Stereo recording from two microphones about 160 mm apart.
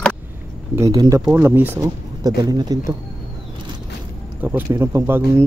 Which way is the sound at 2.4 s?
25° right (ahead or behind).